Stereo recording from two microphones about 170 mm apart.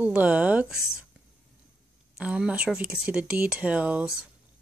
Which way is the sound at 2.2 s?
5° right (ahead or behind).